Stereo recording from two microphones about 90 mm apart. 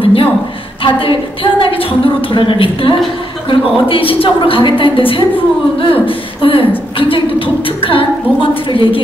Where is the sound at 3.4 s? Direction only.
85° left.